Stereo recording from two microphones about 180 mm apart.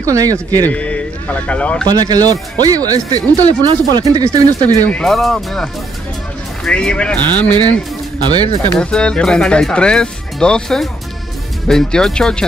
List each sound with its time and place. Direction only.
0.0 s speech: 20° right (ahead or behind)
0.7 s speech: 5° left (ahead or behind)
1.9 s speech: 20° right (ahead or behind)
4.8 s speech: 5° left (ahead or behind)
8.7 s speech: 5° left (ahead or behind)